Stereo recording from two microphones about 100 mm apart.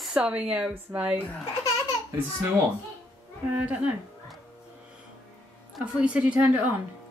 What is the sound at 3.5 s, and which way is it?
Speech, 15° right (ahead or behind).